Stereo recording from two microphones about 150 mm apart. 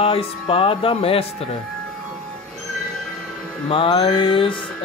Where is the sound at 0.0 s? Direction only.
40° left (ahead or behind).